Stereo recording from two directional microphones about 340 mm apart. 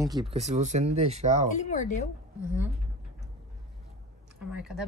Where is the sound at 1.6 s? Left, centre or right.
Left.